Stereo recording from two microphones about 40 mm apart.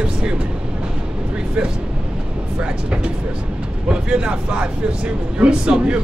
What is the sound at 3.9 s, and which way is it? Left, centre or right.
Speech, right.